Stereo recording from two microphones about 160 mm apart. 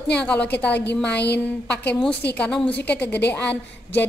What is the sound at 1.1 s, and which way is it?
Speech, 90° left.